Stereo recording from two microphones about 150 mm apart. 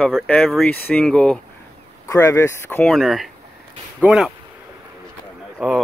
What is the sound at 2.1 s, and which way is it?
Speech, 20° left (ahead or behind).